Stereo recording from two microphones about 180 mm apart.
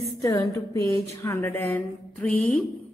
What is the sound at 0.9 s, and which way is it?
Speech, 35° right (ahead or behind).